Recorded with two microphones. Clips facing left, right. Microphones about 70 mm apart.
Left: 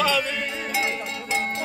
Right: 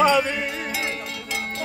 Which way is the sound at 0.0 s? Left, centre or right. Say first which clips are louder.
Right 5 dB; right.